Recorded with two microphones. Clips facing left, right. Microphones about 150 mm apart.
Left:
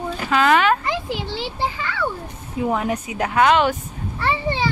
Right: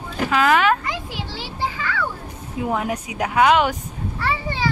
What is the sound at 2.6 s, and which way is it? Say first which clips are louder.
Speech: left 2 dB; 5° right (ahead or behind).